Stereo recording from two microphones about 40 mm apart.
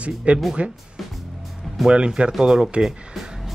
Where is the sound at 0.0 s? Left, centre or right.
Right.